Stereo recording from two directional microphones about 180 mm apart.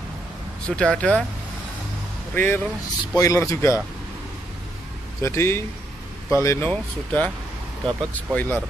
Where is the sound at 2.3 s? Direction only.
10° left (ahead or behind).